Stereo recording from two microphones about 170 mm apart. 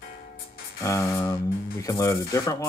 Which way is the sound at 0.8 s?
20° left (ahead or behind).